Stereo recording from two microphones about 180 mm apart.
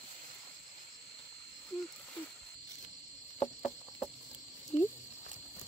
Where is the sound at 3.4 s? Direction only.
25° left (ahead or behind).